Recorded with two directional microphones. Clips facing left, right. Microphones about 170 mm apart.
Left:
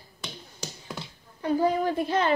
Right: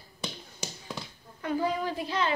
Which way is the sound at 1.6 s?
50° left (ahead or behind).